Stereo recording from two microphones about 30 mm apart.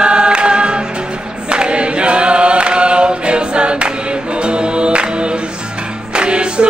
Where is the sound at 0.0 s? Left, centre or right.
Right.